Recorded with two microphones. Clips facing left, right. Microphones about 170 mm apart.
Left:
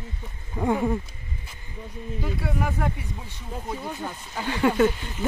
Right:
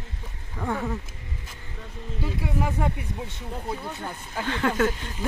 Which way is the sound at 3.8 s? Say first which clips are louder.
Left 2 dB; 15° left (ahead or behind).